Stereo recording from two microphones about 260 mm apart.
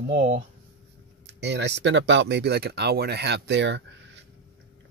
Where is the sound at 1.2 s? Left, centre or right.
Right.